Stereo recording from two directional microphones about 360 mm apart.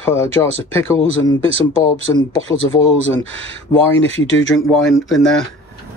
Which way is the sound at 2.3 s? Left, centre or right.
Left.